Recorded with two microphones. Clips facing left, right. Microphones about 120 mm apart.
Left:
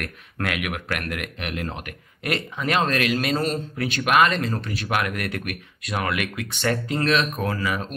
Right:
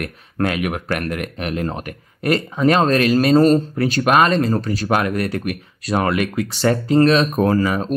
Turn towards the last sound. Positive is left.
turn(degrees=-40)  # may be behind; listen again after turning